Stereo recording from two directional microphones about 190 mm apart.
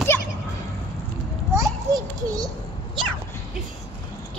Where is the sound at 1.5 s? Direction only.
15° right (ahead or behind).